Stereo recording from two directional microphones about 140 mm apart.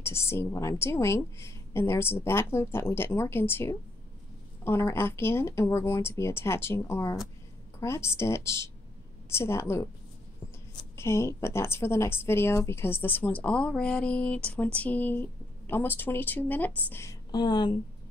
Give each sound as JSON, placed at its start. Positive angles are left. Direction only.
{"t": 0.0, "sound": "a woman's voice", "side_deg": 20}
{"t": 11.0, "sound": "a woman's voice", "side_deg": 20}